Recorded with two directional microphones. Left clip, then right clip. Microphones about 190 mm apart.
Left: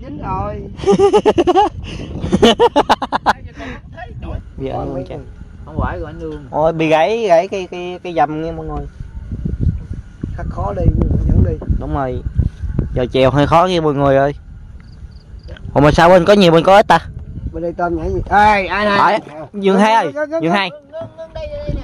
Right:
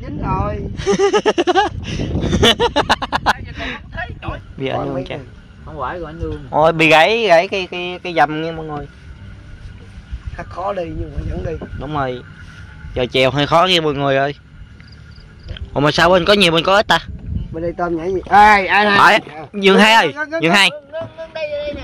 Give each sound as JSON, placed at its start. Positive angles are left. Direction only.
{"t": 0.0, "sound": "speech", "side_deg": 0}
{"t": 1.1, "sound": "speech", "side_deg": 35}
{"t": 1.6, "sound": "a sound", "side_deg": 0}
{"t": 2.3, "sound": "speech", "side_deg": 35}
{"t": 2.7, "sound": "a sound", "side_deg": 0}
{"t": 5.7, "sound": "a man's voice", "side_deg": 15}
{"t": 6.5, "sound": "a man's voice", "side_deg": 0}
{"t": 10.6, "sound": "speech", "side_deg": 30}
{"t": 13.5, "sound": "speech", "side_deg": 20}
{"t": 13.7, "sound": "speech", "side_deg": 35}
{"t": 15.7, "sound": "speech", "side_deg": 35}
{"t": 18.9, "sound": "a man's voice", "side_deg": 5}
{"t": 20.3, "sound": "a sound", "side_deg": 5}
{"t": 21.2, "sound": "a sound", "side_deg": -40}